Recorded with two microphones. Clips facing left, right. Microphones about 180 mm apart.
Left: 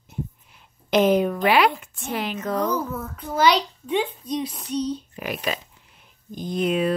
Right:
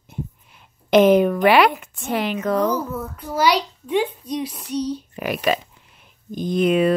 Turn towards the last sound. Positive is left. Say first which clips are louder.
# right 5 dB
turn(degrees=-65)  # may be behind; listen again after turning